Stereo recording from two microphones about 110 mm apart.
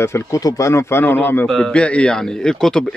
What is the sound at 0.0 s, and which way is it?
A man's voice, 25° left (ahead or behind).